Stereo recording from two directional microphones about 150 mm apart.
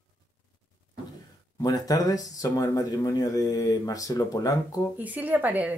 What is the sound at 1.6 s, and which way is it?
Speech, 25° left (ahead or behind).